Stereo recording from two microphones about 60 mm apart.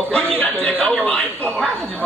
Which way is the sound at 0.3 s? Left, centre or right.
Left.